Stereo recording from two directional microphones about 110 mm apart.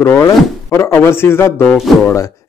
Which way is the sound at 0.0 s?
25° left (ahead or behind).